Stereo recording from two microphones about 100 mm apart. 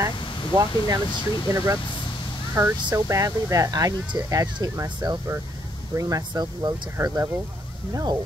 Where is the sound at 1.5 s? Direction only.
35° right (ahead or behind).